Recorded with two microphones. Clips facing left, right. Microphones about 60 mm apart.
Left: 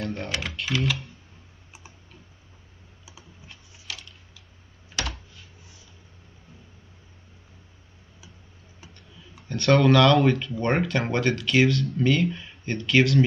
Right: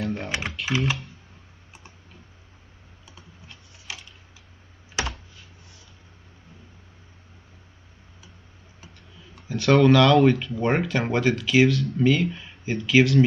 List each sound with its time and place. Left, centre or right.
0.0 s speech: centre
3.1 s computer keyboard: centre
3.9 s tick-tock: centre
5.0 s computer keyboard: right
8.8 s speech: centre